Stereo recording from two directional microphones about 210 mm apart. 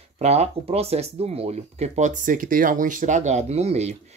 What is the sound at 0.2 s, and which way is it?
Speech, 30° right (ahead or behind).